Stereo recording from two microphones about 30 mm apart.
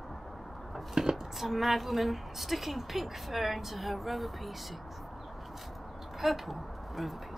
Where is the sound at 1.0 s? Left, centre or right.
Right.